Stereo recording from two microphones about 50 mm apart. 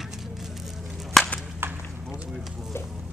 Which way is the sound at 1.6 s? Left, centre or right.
Right.